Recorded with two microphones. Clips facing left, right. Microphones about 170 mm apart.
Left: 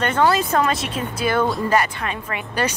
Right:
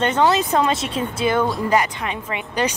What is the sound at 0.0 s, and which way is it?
Speech, 20° right (ahead or behind).